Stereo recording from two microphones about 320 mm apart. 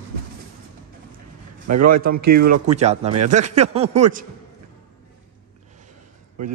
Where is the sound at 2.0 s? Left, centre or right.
Right.